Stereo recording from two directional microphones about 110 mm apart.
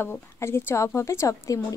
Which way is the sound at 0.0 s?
20° left (ahead or behind).